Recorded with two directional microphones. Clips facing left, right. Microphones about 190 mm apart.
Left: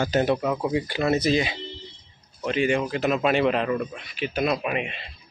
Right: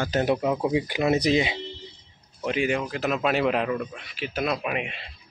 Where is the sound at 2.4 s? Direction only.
10° right (ahead or behind).